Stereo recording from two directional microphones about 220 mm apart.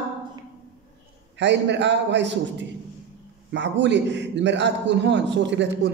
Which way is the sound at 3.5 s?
55° right (ahead or behind).